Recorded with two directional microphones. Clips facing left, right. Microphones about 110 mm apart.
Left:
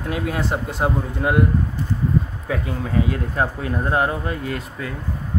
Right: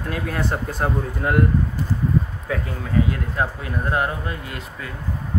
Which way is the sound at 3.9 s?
30° left (ahead or behind).